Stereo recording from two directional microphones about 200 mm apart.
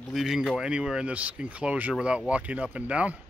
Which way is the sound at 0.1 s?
Centre (ahead or behind).